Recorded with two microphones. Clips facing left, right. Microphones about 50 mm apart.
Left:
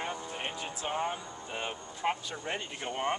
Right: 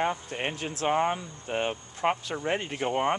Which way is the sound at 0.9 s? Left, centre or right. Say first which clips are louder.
Right 8 dB; right.